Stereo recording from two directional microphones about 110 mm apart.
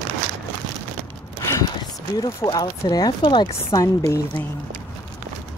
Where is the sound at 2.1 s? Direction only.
35° left (ahead or behind).